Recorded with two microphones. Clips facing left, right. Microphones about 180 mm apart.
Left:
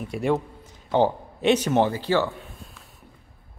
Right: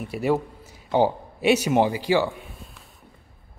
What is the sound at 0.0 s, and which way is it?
Speech, 5° right (ahead or behind).